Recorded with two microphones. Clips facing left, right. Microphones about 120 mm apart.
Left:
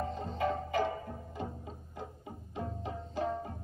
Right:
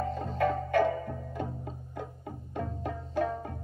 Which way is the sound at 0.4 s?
55° right (ahead or behind).